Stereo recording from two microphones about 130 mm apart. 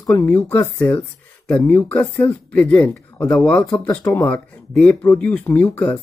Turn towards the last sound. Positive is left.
turn(degrees=15)  # may be behind; listen again after turning